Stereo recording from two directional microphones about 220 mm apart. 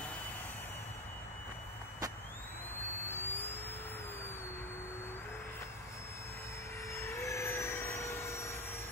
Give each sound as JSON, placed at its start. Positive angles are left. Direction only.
{"t": 2.8, "sound": "vehicle", "side_deg": 10}
{"t": 6.9, "sound": "vehicle", "side_deg": 10}